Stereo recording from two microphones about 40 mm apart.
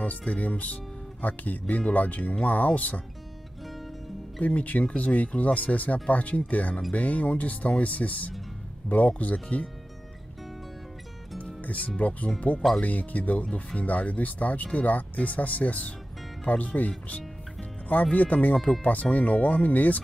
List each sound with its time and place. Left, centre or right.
0.2 s speech: left
4.4 s speech: left
11.6 s speech: left
18.1 s speech: left